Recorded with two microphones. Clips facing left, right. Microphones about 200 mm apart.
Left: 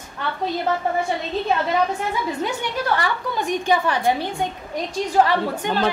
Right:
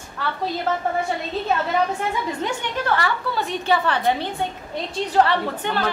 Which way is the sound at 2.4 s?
15° left (ahead or behind).